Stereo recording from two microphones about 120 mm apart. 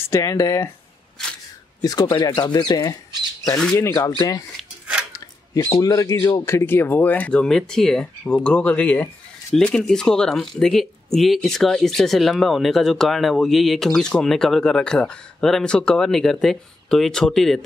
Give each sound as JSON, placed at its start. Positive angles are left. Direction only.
{"t": 0.1, "sound": "speech", "side_deg": 30}
{"t": 1.8, "sound": "speech", "side_deg": 35}
{"t": 5.1, "sound": "a sound", "side_deg": 30}
{"t": 5.8, "sound": "speech", "side_deg": 30}